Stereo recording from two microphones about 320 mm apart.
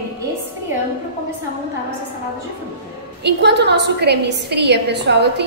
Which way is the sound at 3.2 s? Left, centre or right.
Right.